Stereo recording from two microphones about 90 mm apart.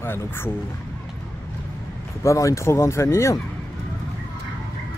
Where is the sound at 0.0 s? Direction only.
25° left (ahead or behind).